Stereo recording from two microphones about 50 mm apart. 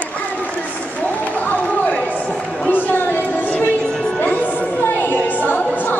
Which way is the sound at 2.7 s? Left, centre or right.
Left.